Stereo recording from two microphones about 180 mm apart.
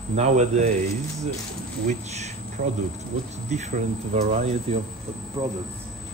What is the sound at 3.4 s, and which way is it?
Speech, 40° right (ahead or behind).